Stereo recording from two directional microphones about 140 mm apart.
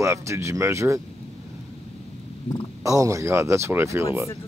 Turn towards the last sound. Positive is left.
turn(degrees=-20)  # may be behind; listen again after turning